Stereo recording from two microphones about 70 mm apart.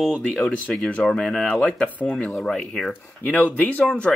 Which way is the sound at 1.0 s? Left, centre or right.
Centre.